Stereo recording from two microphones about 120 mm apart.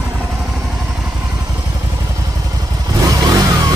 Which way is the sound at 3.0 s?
30° right (ahead or behind).